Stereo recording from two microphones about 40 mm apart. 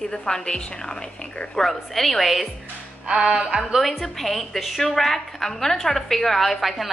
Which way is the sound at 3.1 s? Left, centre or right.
Centre.